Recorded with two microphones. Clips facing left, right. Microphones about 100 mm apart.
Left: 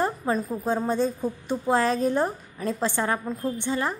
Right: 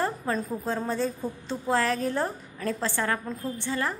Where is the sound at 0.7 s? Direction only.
20° left (ahead or behind).